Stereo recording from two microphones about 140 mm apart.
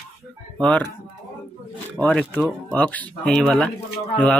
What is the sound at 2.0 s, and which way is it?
Speech, 5° left (ahead or behind).